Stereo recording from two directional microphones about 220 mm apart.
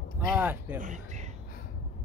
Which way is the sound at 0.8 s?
35° right (ahead or behind).